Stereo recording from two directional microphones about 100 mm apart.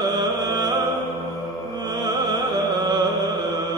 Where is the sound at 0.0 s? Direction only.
45° right (ahead or behind).